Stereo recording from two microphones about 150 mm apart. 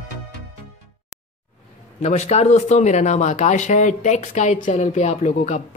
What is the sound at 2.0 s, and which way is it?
Speech, 50° left (ahead or behind).